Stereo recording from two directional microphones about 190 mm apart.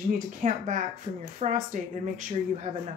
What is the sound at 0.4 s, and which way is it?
Speech, 40° right (ahead or behind).